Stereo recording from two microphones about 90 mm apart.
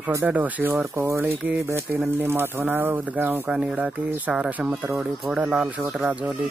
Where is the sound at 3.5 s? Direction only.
10° right (ahead or behind).